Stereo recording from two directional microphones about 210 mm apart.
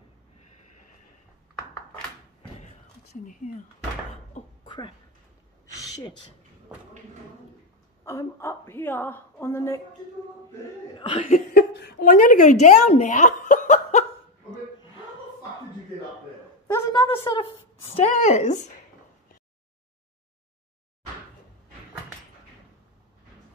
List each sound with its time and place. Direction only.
4.6 s a sound: 20° left (ahead or behind)
8.0 s a woman's voice: 15° left (ahead or behind)
11.0 s laughter: 25° left (ahead or behind)
11.5 s a sound: 50° left (ahead or behind)
12.1 s a woman's voice: 40° left (ahead or behind)
12.6 s chuckle: 35° left (ahead or behind)
16.7 s a woman's voice: 15° left (ahead or behind); by 18.7 s 35° left (ahead or behind)